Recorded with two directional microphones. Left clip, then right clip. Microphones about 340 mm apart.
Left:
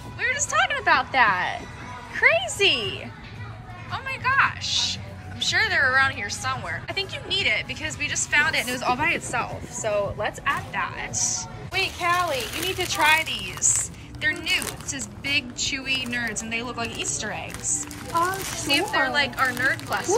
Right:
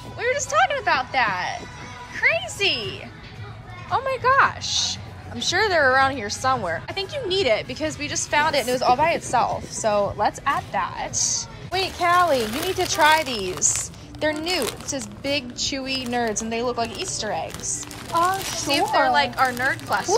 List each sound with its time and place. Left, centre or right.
0.2 s a woman's voice: centre